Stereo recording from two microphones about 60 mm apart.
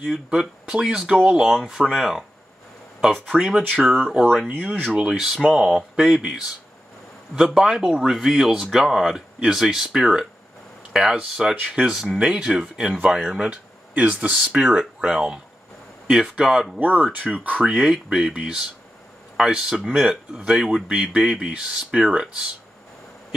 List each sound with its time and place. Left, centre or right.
0.3 s speech: centre
3.3 s speech: centre
5.0 s speech: centre
7.3 s speech: centre
14.3 s speech: centre
16.8 s speech: right
17.6 s speech: centre